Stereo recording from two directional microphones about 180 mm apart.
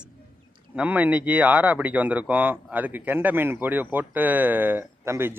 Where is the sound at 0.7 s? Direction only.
10° right (ahead or behind).